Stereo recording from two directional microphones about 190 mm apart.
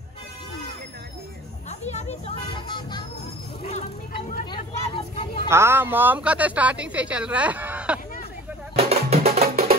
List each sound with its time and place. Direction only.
1.7 s music: 35° left (ahead or behind)
4.8 s vehicle: 25° left (ahead or behind)
5.5 s speech: 15° right (ahead or behind)
8.7 s music: 35° right (ahead or behind)
9.4 s music: 50° right (ahead or behind)